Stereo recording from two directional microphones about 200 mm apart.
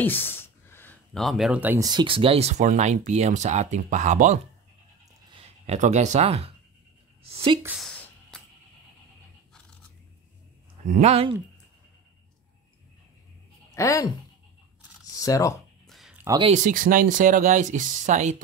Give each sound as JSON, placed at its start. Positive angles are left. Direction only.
{"t": 0.0, "sound": "speech", "side_deg": 10}
{"t": 7.6, "sound": "a sound", "side_deg": 0}
{"t": 10.9, "sound": "speech", "side_deg": -30}
{"t": 13.7, "sound": "speech", "side_deg": 15}
{"t": 15.1, "sound": "speech", "side_deg": 15}
{"t": 15.9, "sound": "a sound", "side_deg": -5}
{"t": 16.3, "sound": "speech", "side_deg": -25}
{"t": 16.5, "sound": "speech", "side_deg": -40}